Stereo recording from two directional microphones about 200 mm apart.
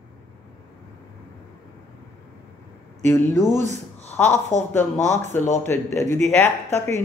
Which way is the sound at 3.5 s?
35° right (ahead or behind).